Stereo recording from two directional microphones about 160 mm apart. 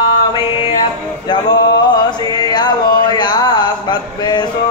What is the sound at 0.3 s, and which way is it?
Mantra, 30° left (ahead or behind).